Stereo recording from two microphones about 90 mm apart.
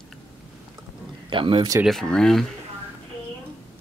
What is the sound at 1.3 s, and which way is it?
Speech, 70° right (ahead or behind).